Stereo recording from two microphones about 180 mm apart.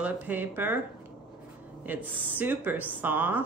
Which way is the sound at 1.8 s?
10° right (ahead or behind).